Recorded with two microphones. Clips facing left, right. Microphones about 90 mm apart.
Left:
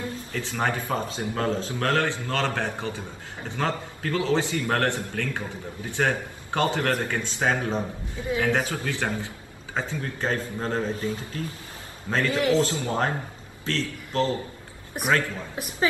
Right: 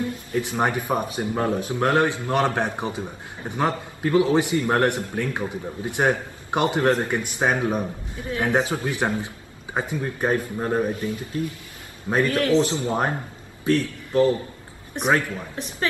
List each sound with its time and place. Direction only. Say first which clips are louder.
0.3 s a man's voice: right 4 dB; 20° right (ahead or behind)
11.0 s speech: right 1 dB; 30° left (ahead or behind)
12.3 s a woman's voice: left 1 dB; 15° left (ahead or behind)
12.5 s a man's voice: right 3 dB; 25° right (ahead or behind)
15.0 s a woman's voice: right 3 dB; 5° left (ahead or behind)